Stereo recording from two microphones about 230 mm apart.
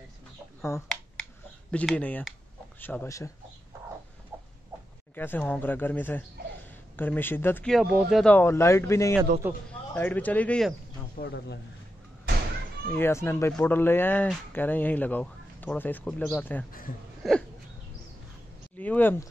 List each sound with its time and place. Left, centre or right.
0.6 s a sound: centre
1.7 s speech: centre
4.3 s a sound: centre
5.1 s speech: centre
9.4 s a man's voice: centre
9.9 s speech: centre
11.1 s speech: left
12.9 s speech: centre
18.8 s speech: centre